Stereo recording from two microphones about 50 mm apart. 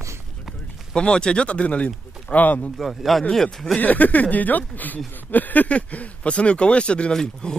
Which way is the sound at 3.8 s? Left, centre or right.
Left.